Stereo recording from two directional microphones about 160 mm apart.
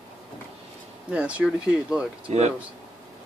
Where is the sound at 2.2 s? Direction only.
45° right (ahead or behind).